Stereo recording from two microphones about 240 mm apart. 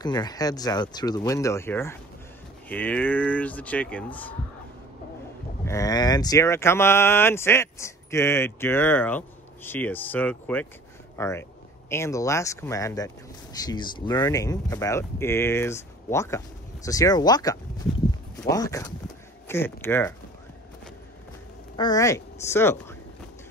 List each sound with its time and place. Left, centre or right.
0.0 s speech: centre
5.7 s speech: centre
21.7 s speech: centre